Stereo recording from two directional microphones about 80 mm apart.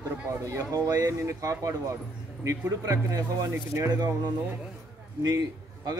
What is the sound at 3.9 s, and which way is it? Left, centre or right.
Speech, right.